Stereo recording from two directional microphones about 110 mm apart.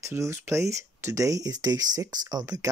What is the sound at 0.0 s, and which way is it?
Speech, 25° right (ahead or behind).